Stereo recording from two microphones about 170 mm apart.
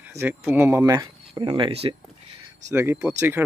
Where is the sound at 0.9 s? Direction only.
25° right (ahead or behind).